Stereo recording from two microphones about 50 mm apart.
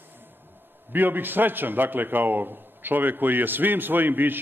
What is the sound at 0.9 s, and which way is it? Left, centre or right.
A man's voice, right.